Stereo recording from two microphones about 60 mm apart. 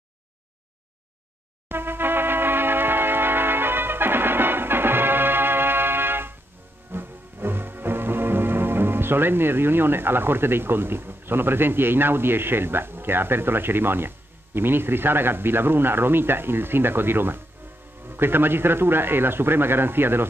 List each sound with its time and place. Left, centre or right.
1.7 s music: right
18.0 s a man's voice: right